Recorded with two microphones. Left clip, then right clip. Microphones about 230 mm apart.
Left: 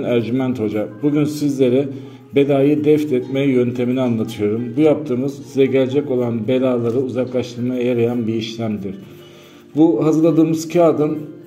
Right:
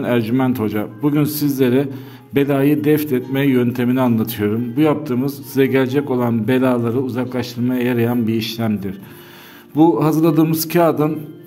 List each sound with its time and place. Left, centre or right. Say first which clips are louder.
0.0 s a man's voice: right 1 dB; right
9.9 s music: left 1 dB; right